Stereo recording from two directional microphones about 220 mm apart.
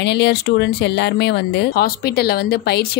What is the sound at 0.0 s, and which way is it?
Speech, 50° left (ahead or behind).